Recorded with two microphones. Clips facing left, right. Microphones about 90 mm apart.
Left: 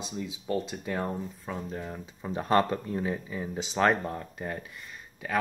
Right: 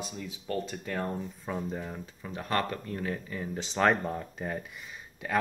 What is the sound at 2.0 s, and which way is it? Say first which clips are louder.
Speech: left 5 dB; 25° left (ahead or behind).